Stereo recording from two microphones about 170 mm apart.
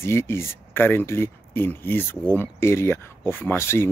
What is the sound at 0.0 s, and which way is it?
Speech, 15° left (ahead or behind).